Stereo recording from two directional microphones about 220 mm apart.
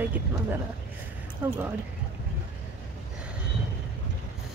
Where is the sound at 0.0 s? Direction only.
10° right (ahead or behind).